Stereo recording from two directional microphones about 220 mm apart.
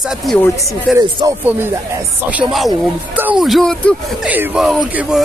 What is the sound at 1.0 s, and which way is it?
Speech, 15° right (ahead or behind).